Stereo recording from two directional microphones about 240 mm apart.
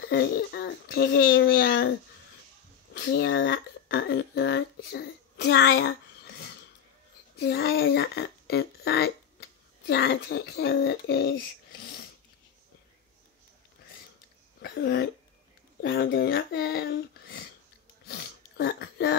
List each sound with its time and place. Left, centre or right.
0.0 s speech: left
2.9 s speech: left
14.6 s speech: left
18.0 s sneeze: left